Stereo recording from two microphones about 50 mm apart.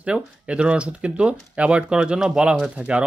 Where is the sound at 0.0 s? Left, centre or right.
Right.